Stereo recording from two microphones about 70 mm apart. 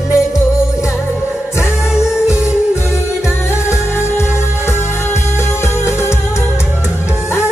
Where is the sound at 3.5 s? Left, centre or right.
Left.